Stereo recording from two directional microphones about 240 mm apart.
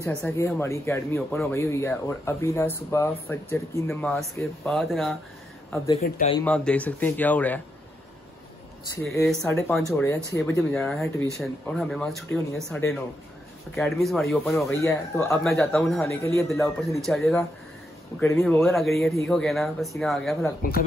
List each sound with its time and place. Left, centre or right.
0.0 s speech: centre
6.0 s speech: left
6.4 s speech: centre
9.1 s speech: centre
16.1 s speech: centre
16.4 s speech: centre
18.4 s speech: centre
20.6 s speech: left